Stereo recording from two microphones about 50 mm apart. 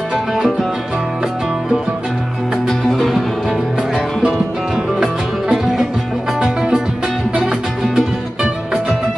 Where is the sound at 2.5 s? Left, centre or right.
Centre.